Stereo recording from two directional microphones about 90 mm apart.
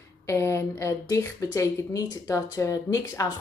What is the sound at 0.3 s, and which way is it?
Speech, 30° left (ahead or behind).